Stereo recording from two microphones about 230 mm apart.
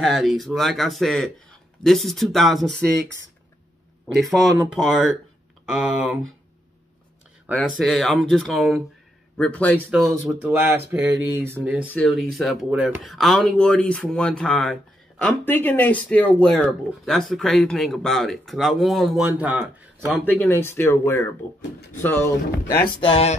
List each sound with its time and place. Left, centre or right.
0.0 s speech: centre
4.1 s speech: centre
7.5 s speech: centre
9.8 s speech: centre
11.9 s speech: centre
20.2 s speech: centre
22.9 s speech: left